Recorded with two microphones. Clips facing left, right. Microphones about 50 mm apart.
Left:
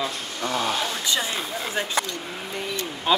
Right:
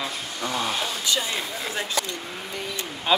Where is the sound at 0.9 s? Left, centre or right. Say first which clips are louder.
Left 1 dB; left.